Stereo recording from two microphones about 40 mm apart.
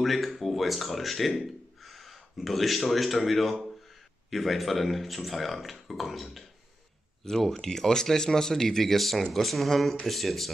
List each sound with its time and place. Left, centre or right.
0.0 s speech: centre